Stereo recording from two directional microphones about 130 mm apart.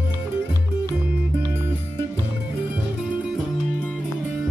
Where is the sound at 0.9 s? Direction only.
15° right (ahead or behind).